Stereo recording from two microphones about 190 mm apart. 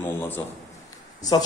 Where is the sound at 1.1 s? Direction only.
20° left (ahead or behind).